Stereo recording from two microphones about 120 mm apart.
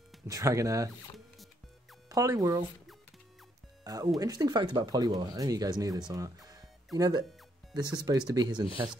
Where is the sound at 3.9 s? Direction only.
30° right (ahead or behind).